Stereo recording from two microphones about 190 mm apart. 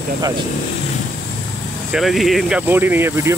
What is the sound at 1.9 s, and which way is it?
Speech, centre (ahead or behind).